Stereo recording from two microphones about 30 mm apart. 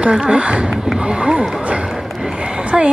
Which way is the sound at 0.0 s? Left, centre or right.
Right.